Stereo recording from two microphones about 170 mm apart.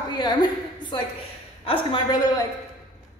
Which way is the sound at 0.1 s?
25° left (ahead or behind).